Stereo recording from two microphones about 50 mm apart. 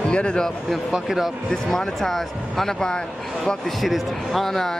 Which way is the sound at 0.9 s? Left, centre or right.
Centre.